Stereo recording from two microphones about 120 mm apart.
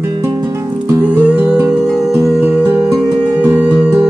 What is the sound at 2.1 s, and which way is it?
Music, 15° right (ahead or behind).